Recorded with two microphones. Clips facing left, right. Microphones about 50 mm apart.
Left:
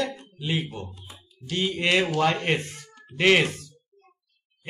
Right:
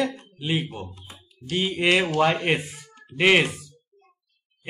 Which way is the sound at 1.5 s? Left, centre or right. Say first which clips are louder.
Right 2 dB; centre.